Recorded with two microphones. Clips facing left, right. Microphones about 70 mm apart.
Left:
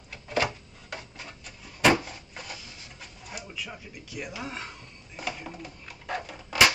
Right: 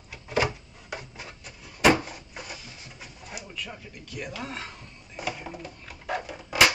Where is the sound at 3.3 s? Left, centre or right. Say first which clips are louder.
Even; centre.